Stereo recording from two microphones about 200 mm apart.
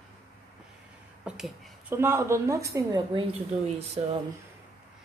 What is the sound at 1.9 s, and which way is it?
A woman's voice, 10° right (ahead or behind).